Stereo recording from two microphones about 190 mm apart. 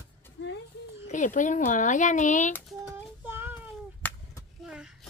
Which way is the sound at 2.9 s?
10° right (ahead or behind).